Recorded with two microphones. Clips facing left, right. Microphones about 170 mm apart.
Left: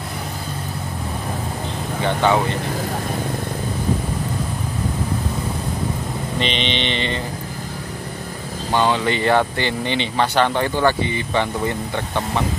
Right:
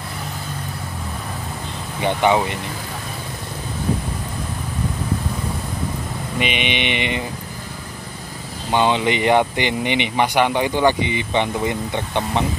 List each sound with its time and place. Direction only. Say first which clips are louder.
2.0 s speech: right 1 dB; 15° right (ahead or behind)
6.3 s speech: right 1 dB; 10° right (ahead or behind)
8.7 s speech: right 1 dB; 20° right (ahead or behind)